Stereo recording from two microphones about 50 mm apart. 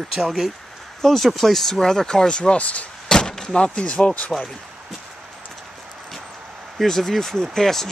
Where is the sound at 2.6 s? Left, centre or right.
Left.